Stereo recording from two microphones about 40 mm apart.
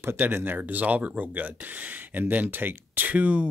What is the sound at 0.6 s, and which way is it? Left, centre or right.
Speech, right.